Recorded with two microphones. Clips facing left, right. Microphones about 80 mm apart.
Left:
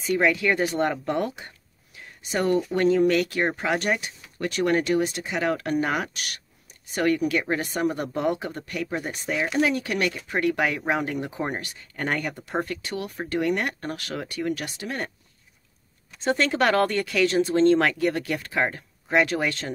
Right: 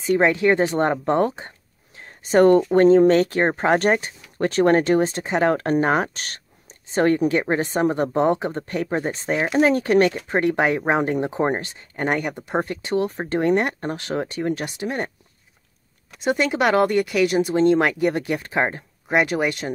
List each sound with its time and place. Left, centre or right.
0.0 s speech: right
2.0 s a sound: right
2.7 s speech: right
16.2 s speech: centre